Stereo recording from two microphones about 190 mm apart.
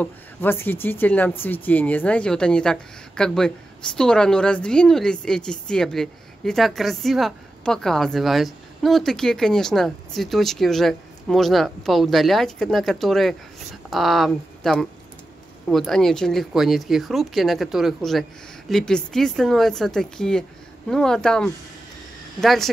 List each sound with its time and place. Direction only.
0.0 s speech: 10° left (ahead or behind)